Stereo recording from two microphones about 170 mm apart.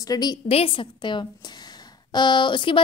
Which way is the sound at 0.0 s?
25° left (ahead or behind).